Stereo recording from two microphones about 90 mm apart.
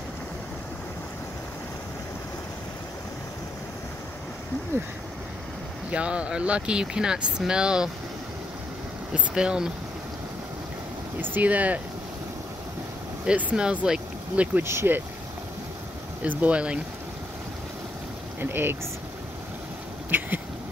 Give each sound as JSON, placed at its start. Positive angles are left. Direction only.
{"t": 5.9, "sound": "speech", "side_deg": -15}
{"t": 9.1, "sound": "speech", "side_deg": -10}
{"t": 11.1, "sound": "speech", "side_deg": -20}
{"t": 13.2, "sound": "speech", "side_deg": -10}
{"t": 14.6, "sound": "speech", "side_deg": -30}
{"t": 16.3, "sound": "speech", "side_deg": -15}
{"t": 18.4, "sound": "speech", "side_deg": -25}
{"t": 20.1, "sound": "a sound", "side_deg": -20}